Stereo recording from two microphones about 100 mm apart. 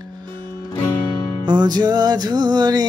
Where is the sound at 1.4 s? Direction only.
45° right (ahead or behind).